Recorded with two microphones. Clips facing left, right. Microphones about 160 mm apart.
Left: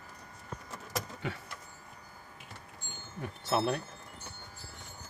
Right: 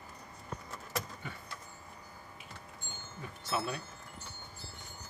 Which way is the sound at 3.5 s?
55° left (ahead or behind).